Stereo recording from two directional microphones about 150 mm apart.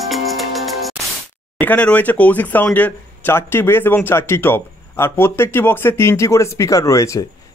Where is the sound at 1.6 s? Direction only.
10° left (ahead or behind).